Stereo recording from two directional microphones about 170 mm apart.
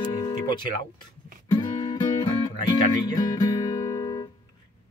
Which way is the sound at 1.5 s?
25° left (ahead or behind).